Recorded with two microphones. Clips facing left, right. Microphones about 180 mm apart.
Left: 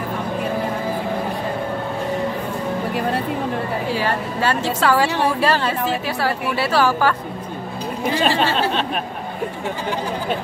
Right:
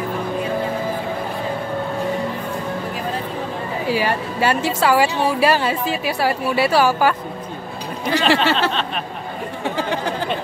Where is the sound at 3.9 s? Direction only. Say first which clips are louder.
Right 1 dB; 10° right (ahead or behind).